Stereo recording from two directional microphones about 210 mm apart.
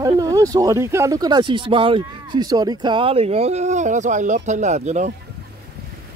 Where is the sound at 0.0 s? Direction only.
15° right (ahead or behind); by 5.1 s 35° right (ahead or behind).